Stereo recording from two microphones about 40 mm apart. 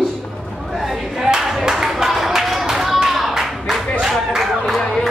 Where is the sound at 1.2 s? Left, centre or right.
Centre.